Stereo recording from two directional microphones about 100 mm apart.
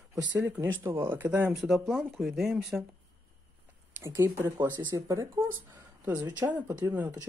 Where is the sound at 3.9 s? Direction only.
25° right (ahead or behind).